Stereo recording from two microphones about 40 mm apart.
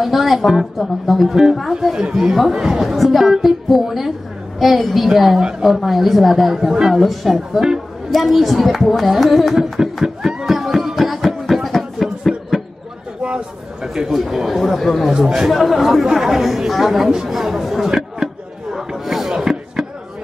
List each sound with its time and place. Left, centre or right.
0.0 s a woman's voice: centre
2.0 s a woman's voice: centre
10.0 s music: centre
13.8 s a woman's voice: centre
15.0 s speech: centre
15.4 s a woman's voice: centre
17.1 s chatter: centre